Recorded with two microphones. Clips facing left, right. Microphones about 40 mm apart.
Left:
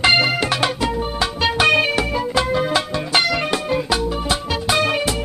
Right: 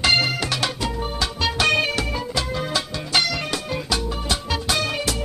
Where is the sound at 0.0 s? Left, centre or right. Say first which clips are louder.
Left 4 dB; left.